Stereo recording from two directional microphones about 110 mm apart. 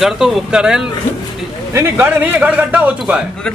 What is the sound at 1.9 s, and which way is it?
A man's voice, 15° right (ahead or behind).